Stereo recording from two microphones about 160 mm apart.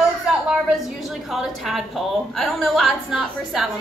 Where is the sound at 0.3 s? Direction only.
5° right (ahead or behind).